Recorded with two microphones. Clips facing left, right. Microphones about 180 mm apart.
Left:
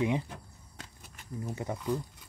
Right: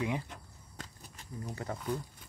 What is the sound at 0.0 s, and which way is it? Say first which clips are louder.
Speech: left 5 dB; 20° left (ahead or behind).